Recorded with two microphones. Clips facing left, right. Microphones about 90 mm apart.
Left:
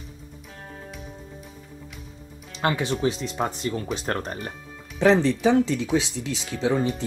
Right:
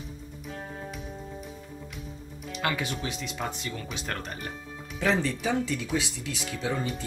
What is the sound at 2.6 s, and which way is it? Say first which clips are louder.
Speech: left 7 dB; 30° left (ahead or behind).